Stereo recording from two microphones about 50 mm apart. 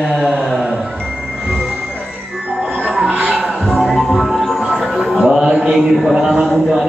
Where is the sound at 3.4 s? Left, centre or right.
Centre.